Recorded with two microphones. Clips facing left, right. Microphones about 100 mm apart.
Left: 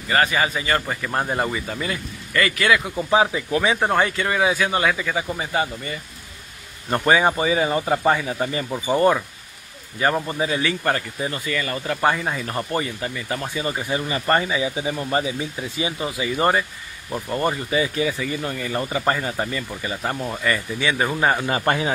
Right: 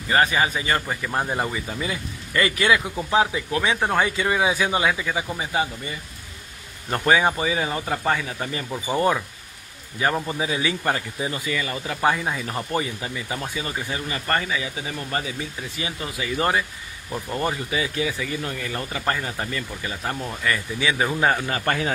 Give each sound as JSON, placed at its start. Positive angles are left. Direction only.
{"t": 0.1, "sound": "speech", "side_deg": -15}
{"t": 1.1, "sound": "speech", "side_deg": 5}
{"t": 1.5, "sound": "speech", "side_deg": -5}
{"t": 2.3, "sound": "speech", "side_deg": -20}
{"t": 3.1, "sound": "speech", "side_deg": 5}
{"t": 4.2, "sound": "speech", "side_deg": -15}
{"t": 6.9, "sound": "speech", "side_deg": 5}
{"t": 7.8, "sound": "speech", "side_deg": 15}
{"t": 13.9, "sound": "speech", "side_deg": 25}
{"t": 16.3, "sound": "speech", "side_deg": 0}
{"t": 21.5, "sound": "speech", "side_deg": 25}